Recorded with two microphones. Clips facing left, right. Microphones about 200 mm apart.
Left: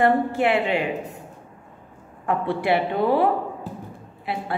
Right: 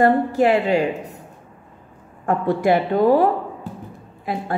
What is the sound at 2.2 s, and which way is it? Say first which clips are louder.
A woman's voice: right 4 dB; 45° right (ahead or behind).